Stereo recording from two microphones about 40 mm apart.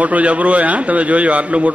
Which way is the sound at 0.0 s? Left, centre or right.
Right.